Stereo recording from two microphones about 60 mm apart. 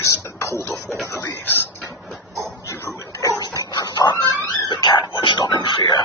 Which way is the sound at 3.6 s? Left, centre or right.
Left.